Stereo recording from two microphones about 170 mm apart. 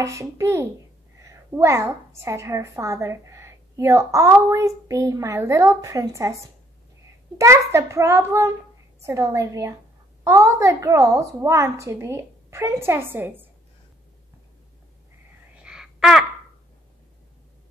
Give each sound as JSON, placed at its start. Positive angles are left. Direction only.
{"t": 0.0, "sound": "a woman's voice", "side_deg": -20}
{"t": 7.3, "sound": "a woman's voice", "side_deg": -15}
{"t": 15.6, "sound": "a sound", "side_deg": -5}